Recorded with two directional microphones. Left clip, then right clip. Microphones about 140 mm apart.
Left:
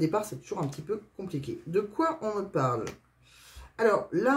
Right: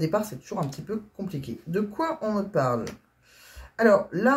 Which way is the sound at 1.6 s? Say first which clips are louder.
Even; 25° left (ahead or behind).